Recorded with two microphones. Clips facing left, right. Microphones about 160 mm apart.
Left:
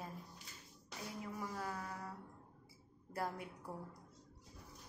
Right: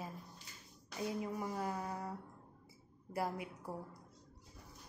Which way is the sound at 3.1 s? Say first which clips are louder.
Right 3 dB; 10° right (ahead or behind).